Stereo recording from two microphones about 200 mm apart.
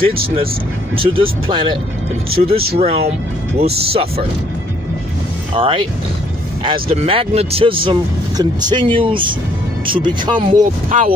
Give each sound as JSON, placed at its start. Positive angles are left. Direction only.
{"t": 0.9, "sound": "speech", "side_deg": -25}
{"t": 5.5, "sound": "speech", "side_deg": -25}
{"t": 10.5, "sound": "speech", "side_deg": -40}